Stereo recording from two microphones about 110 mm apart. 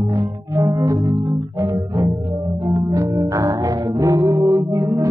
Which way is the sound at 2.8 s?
30° right (ahead or behind).